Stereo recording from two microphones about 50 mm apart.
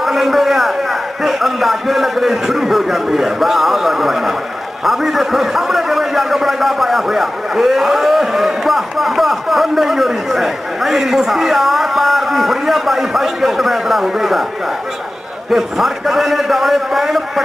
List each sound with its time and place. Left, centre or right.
0.0 s a sound: centre
1.2 s a man's voice: centre
15.5 s a man's voice: centre